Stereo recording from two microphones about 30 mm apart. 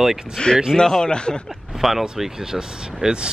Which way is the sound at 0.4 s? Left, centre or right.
Left.